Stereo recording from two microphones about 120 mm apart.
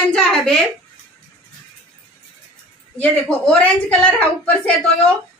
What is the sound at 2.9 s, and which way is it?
A woman's voice, 10° left (ahead or behind).